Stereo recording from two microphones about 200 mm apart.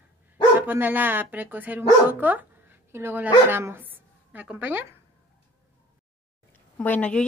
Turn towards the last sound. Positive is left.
turn(degrees=5)  # may be behind; listen again after turning